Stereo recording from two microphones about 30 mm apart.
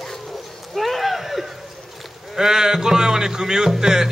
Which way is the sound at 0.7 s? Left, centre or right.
Centre.